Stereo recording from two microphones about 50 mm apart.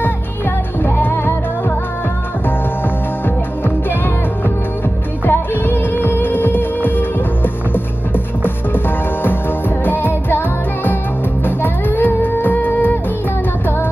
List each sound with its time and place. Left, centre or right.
0.8 s music: left
3.6 s music: left
5.2 s music: left